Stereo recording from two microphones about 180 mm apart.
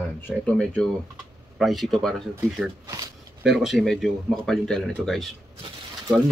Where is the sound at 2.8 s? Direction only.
20° right (ahead or behind).